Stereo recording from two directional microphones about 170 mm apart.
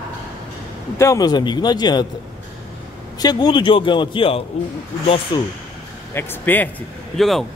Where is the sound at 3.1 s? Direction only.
25° left (ahead or behind).